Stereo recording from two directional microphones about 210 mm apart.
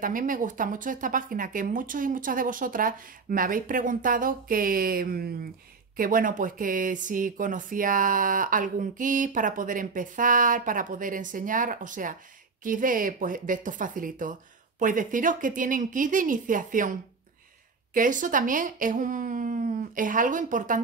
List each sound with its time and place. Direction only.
0.0 s speech: 40° right (ahead or behind)
17.9 s speech: 40° right (ahead or behind)